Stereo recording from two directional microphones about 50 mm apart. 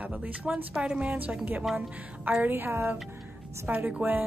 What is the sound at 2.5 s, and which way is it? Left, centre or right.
Speech, right.